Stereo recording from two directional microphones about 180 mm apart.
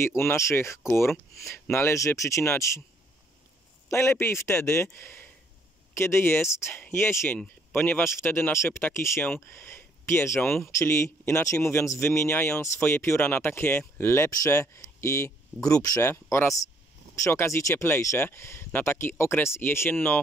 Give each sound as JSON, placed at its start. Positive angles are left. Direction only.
{"t": 0.0, "sound": "speech", "side_deg": 15}
{"t": 3.9, "sound": "speech", "side_deg": 15}